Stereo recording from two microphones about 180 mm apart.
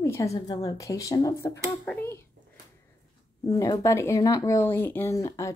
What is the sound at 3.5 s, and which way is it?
A woman's voice, 20° left (ahead or behind).